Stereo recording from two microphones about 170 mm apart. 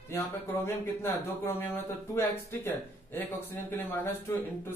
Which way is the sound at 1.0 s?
15° left (ahead or behind).